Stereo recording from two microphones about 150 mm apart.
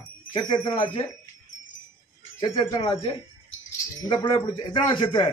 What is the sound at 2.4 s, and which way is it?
Speech, 35° left (ahead or behind).